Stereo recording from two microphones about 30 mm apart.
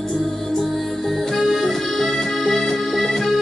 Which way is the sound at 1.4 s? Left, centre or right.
Centre.